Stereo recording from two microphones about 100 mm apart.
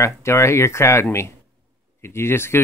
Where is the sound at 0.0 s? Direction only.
30° left (ahead or behind).